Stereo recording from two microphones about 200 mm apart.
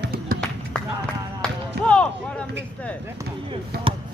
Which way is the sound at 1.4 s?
5° left (ahead or behind).